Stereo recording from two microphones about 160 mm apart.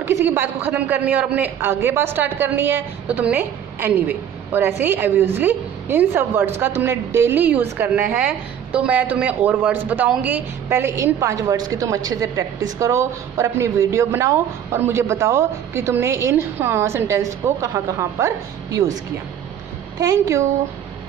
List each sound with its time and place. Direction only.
0.0 s a woman's voice: 15° right (ahead or behind)
20.0 s a woman's voice: 20° right (ahead or behind)